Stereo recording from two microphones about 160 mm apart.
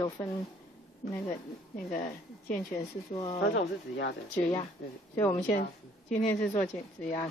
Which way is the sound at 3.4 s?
85° left.